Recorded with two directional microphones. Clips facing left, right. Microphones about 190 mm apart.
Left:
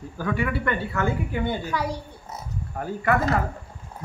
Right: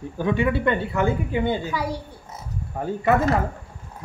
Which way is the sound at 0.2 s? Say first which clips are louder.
Right 5 dB; 20° right (ahead or behind).